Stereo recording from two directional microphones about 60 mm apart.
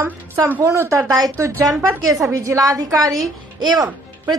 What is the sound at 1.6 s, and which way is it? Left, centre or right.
Speech, right.